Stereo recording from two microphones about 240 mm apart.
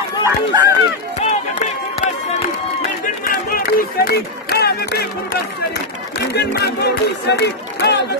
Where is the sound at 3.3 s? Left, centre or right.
Left.